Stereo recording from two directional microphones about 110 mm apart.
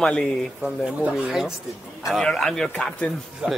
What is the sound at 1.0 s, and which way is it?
A man's voice, 5° right (ahead or behind).